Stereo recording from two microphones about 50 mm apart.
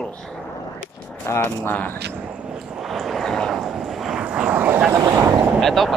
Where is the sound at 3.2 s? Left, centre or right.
Centre.